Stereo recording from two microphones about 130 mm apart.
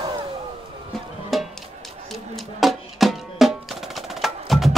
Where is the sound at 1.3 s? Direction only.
Centre (ahead or behind).